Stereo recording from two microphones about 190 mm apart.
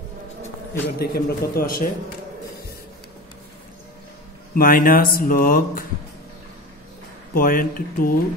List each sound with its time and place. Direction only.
0.8 s a man's voice: 55° left (ahead or behind)
4.6 s speech: 50° left (ahead or behind)
7.3 s speech: 50° left (ahead or behind)